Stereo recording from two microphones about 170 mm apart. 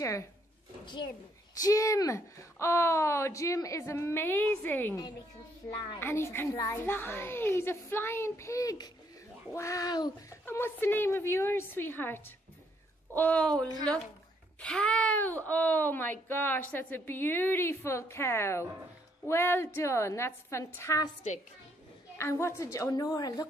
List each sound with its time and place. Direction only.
0.8 s a woman's voice: 25° left (ahead or behind)
22.1 s a woman's voice: 15° left (ahead or behind)